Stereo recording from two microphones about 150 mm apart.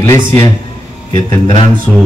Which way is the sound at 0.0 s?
20° left (ahead or behind).